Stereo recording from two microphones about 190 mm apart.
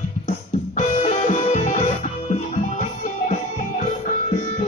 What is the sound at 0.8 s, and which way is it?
Music, 40° left (ahead or behind).